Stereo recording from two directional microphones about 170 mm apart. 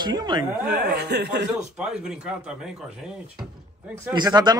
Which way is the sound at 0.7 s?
70° right (ahead or behind).